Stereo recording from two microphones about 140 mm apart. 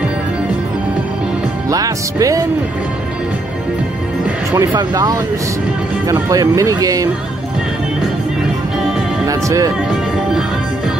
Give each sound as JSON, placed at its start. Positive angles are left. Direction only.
{"t": 1.7, "sound": "speech", "side_deg": -25}
{"t": 4.5, "sound": "speech", "side_deg": -25}
{"t": 6.3, "sound": "speech", "side_deg": -25}
{"t": 9.2, "sound": "music", "side_deg": -25}